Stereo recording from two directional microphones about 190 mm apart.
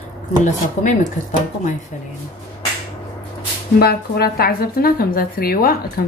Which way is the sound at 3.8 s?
55° left (ahead or behind).